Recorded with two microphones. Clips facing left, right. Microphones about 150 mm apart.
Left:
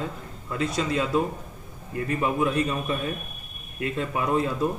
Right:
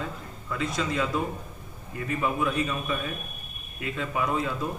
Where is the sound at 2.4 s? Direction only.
30° left (ahead or behind).